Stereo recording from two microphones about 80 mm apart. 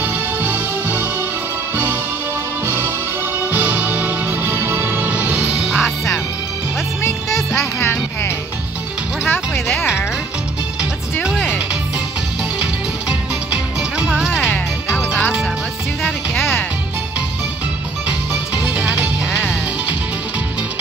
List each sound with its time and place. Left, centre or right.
0.0 s music: right
3.5 s music: centre
7.2 s music: centre
7.8 s music: left
11.2 s music: centre
13.1 s music: centre
18.3 s music: centre